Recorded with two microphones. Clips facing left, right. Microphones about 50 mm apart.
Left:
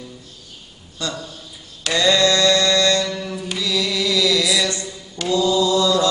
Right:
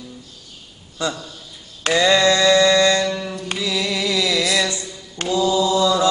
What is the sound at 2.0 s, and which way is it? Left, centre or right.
Mantra, right.